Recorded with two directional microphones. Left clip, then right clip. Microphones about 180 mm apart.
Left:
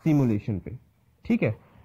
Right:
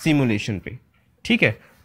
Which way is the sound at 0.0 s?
20° right (ahead or behind).